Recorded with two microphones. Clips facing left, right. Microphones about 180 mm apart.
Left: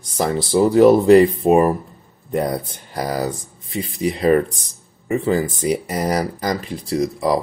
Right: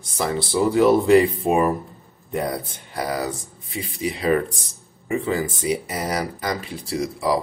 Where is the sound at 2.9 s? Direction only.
40° left (ahead or behind).